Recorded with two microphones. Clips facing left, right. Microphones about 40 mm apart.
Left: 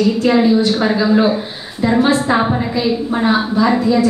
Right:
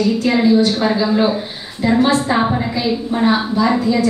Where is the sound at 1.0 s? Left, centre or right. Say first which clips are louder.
Left 4 dB; centre.